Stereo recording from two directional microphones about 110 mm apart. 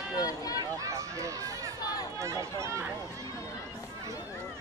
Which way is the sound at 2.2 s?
30° right (ahead or behind).